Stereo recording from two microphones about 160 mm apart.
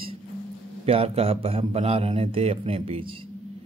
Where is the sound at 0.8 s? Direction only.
35° right (ahead or behind).